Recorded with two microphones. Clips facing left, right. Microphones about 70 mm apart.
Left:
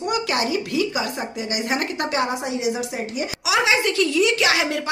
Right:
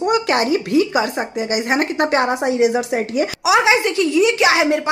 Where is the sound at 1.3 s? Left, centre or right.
Right.